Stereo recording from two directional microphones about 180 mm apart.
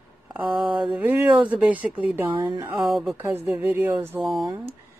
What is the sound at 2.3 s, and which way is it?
Speech, 20° right (ahead or behind).